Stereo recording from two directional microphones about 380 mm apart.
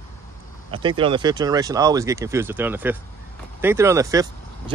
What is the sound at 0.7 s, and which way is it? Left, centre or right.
Speech, centre.